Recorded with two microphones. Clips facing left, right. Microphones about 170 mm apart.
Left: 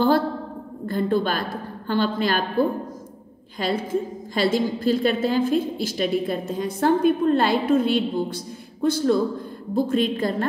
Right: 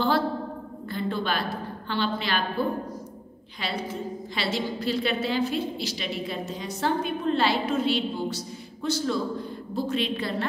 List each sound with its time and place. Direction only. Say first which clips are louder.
0.8 s a woman's voice: left 7 dB; 50° left (ahead or behind)